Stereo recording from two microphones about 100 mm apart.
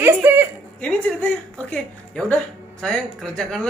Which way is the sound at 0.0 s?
20° right (ahead or behind).